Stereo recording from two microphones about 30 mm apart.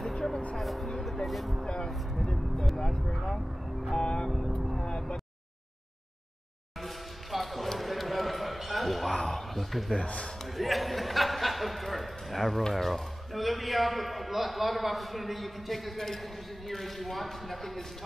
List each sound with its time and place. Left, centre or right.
0.1 s a sound: centre
0.6 s music: centre
2.2 s vehicle: left
3.9 s vehicle: left
6.8 s basketball bounce: centre
9.3 s a sound: centre
12.7 s a man's voice: centre